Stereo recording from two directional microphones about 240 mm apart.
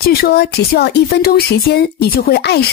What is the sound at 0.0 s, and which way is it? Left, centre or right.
Speech, left.